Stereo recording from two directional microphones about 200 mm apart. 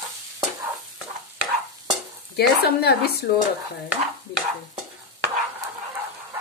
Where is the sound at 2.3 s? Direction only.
55° left (ahead or behind).